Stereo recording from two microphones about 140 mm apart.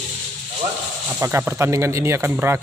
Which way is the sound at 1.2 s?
15° right (ahead or behind).